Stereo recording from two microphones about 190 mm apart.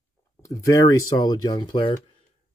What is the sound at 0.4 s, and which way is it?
Speech, 15° left (ahead or behind).